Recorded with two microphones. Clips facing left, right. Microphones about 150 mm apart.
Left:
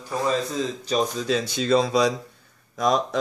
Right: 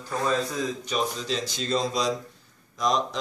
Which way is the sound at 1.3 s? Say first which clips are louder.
Left 7 dB; 60° left (ahead or behind).